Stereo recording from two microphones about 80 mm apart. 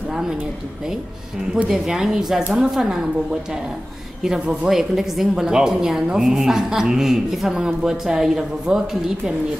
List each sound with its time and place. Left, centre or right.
1.5 s a woman's voice: centre